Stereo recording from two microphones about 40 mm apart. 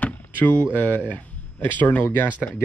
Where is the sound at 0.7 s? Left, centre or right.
Left.